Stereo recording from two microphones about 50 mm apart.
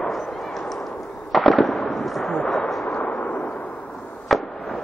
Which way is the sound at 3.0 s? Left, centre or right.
Left.